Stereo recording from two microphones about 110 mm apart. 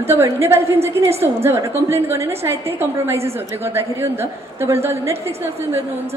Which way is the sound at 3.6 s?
20° right (ahead or behind).